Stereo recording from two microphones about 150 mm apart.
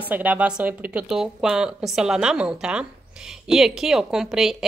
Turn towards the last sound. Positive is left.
turn(degrees=-5)  # may be behind; listen again after turning